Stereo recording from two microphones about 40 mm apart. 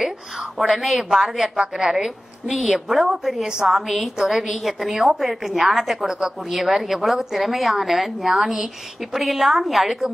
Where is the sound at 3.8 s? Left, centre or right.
Centre.